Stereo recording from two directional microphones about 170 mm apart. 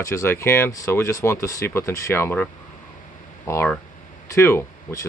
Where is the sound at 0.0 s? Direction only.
15° left (ahead or behind).